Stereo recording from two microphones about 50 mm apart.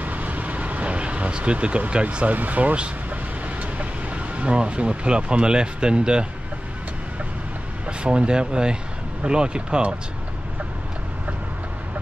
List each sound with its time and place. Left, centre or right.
0.0 s vehicle: right
3.7 s speech: right
7.8 s speech: right